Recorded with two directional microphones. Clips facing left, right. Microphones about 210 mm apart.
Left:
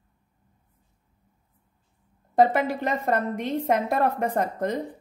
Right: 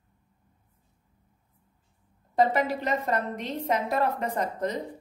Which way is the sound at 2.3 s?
50° left (ahead or behind).